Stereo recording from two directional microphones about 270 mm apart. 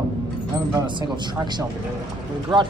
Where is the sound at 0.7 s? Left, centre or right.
Centre.